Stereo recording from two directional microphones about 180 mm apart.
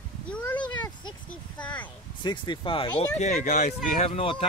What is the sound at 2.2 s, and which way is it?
Speech, 25° left (ahead or behind).